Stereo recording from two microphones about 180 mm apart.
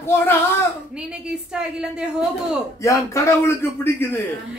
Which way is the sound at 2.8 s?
15° left (ahead or behind).